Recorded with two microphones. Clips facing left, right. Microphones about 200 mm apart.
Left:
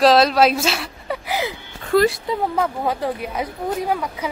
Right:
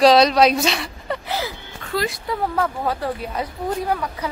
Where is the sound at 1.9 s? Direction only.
55° left (ahead or behind).